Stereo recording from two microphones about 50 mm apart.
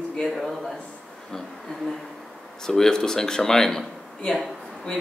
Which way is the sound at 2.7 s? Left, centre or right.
Centre.